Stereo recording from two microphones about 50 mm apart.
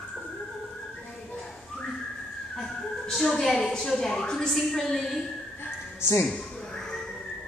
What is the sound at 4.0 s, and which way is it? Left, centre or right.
A woman's voice, centre.